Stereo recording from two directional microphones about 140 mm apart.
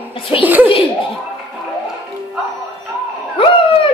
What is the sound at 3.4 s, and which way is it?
Dog, 40° left (ahead or behind).